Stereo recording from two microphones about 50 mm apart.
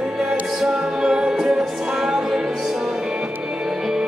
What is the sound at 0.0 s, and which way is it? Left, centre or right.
Music, centre.